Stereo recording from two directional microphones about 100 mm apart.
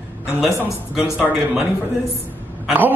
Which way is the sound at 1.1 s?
15° right (ahead or behind).